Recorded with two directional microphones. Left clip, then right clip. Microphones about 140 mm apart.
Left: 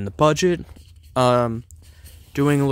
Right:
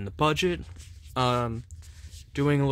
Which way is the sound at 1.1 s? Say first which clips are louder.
Left 9 dB; 60° left (ahead or behind).